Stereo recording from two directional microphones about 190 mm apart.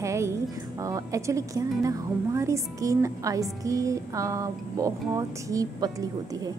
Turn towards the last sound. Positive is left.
turn(degrees=-20)  # may be behind; listen again after turning